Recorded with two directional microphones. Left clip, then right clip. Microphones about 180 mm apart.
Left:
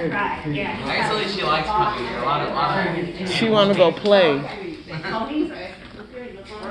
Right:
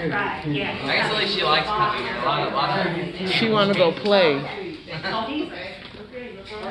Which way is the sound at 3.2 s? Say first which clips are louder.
Right 2 dB; 30° right (ahead or behind).